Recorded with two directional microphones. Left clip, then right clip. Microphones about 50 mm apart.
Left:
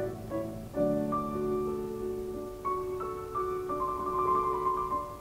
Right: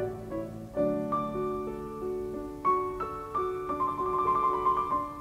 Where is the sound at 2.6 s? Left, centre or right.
Right.